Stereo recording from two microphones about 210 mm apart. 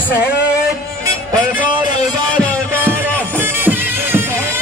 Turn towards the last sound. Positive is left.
turn(degrees=-10)  # may be behind; listen again after turning